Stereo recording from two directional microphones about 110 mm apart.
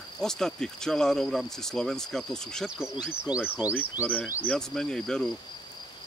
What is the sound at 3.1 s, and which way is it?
Speech, 10° right (ahead or behind).